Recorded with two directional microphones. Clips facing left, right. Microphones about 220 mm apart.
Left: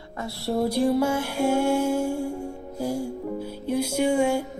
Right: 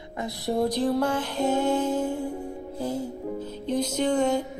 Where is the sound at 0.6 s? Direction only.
10° left (ahead or behind).